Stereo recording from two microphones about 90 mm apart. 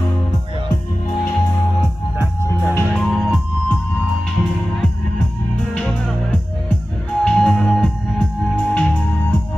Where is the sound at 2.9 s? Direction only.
5° left (ahead or behind).